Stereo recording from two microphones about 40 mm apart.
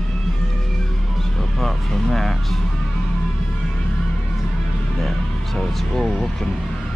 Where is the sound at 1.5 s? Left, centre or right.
Centre.